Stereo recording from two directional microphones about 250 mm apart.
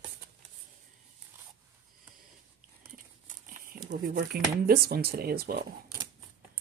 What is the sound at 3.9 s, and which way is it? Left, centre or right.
Speech, right.